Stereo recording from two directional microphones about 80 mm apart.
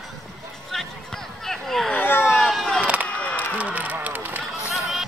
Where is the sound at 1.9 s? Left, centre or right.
Left.